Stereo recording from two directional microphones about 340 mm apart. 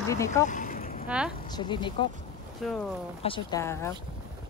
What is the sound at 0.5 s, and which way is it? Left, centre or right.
Boat, left.